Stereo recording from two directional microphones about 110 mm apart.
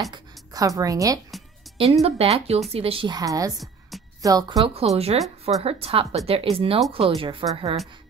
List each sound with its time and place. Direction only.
0.1 s speech: 35° right (ahead or behind)
1.8 s speech: 70° right (ahead or behind)
3.1 s a woman's voice: 35° right (ahead or behind)
3.5 s music: centre (ahead or behind)
4.2 s a woman's voice: 35° right (ahead or behind)
4.6 s a woman's voice: 65° right (ahead or behind)
5.6 s speech: 60° right (ahead or behind)